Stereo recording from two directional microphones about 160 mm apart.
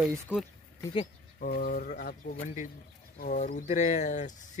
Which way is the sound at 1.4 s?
65° left (ahead or behind).